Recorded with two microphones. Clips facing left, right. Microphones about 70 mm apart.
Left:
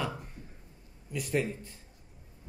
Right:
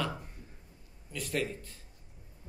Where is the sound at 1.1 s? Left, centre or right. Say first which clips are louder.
Left 3 dB; centre.